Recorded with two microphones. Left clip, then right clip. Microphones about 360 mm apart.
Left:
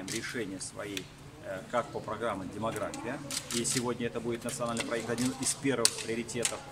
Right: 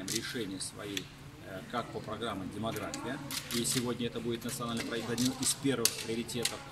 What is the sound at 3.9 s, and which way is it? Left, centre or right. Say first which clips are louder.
Speech: left 2 dB; centre.